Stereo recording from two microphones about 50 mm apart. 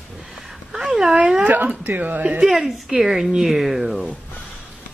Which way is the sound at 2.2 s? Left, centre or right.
Right.